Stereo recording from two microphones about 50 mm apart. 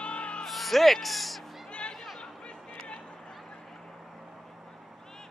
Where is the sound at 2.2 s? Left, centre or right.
Centre.